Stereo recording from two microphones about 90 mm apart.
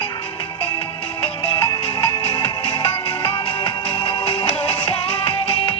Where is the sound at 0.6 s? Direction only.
90° left.